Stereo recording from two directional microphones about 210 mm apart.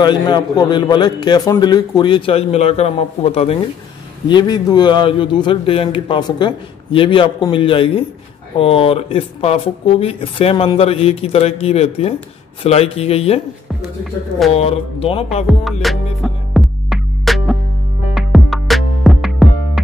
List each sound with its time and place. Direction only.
0.0 s a man's voice: 20° left (ahead or behind)
14.5 s a man's voice: 30° left (ahead or behind)
15.4 s music: centre (ahead or behind)